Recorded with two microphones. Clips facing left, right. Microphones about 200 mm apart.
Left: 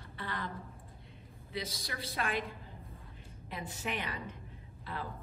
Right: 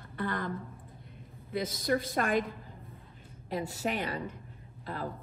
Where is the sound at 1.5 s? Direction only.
50° right (ahead or behind).